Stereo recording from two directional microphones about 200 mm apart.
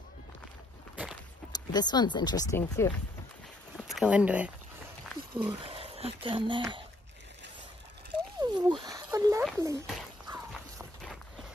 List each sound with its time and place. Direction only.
1.5 s speech: 20° left (ahead or behind)
3.7 s speech: centre (ahead or behind)
5.3 s speech: 25° right (ahead or behind)
8.4 s a sound: 20° right (ahead or behind)
9.6 s speech: 15° right (ahead or behind)
9.8 s a sound: 5° right (ahead or behind)